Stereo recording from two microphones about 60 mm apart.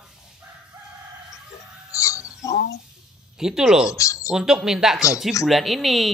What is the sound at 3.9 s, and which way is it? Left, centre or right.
Speech, left.